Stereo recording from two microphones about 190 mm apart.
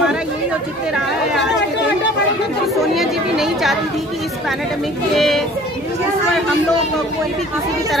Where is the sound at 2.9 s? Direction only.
Centre (ahead or behind).